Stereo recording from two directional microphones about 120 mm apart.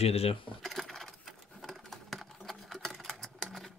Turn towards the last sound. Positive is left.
turn(degrees=0)  # may be behind; listen again after turning